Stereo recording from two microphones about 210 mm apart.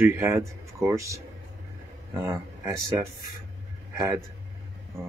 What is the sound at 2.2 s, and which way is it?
Speech, 15° right (ahead or behind).